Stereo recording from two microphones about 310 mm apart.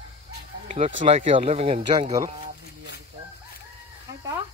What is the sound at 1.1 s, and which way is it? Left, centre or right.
Speech, centre.